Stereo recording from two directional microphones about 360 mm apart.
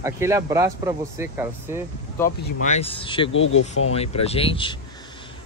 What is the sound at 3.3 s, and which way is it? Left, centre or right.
Speech, left.